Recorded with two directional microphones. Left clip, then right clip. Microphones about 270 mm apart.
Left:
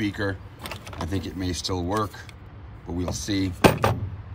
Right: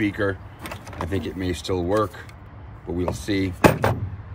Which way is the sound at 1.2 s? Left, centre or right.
Left.